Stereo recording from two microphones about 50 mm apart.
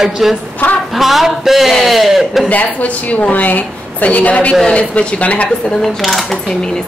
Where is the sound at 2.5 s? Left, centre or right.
Left.